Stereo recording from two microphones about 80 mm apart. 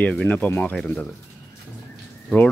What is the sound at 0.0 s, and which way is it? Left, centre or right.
Speech, centre.